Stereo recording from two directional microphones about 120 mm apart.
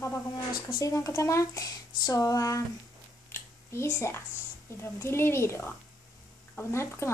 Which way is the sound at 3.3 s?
20° left (ahead or behind).